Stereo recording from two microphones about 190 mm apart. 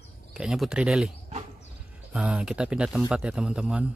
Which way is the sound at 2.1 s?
5° right (ahead or behind).